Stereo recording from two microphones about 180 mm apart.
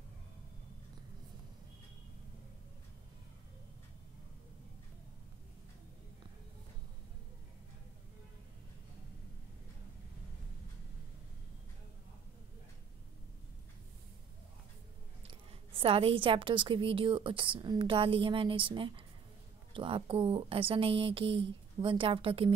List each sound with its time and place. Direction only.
15.2 s a woman's voice: 30° right (ahead or behind)